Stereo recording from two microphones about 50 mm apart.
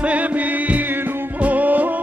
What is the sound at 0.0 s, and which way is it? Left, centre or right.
Music, right.